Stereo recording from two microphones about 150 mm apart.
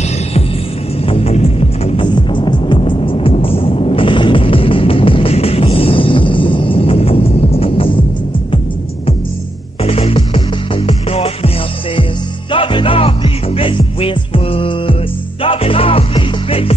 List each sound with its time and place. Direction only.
1.0 s music: 40° left (ahead or behind)
9.8 s music: 40° left (ahead or behind)